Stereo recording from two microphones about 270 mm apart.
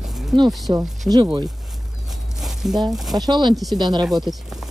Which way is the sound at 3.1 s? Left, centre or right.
Centre.